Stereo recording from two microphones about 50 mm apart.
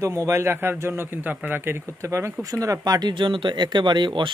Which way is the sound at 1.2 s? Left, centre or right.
Right.